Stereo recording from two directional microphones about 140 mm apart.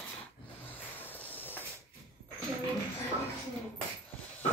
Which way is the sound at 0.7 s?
15° left (ahead or behind).